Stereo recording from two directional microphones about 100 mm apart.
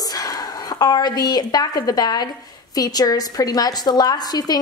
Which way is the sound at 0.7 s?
40° left (ahead or behind).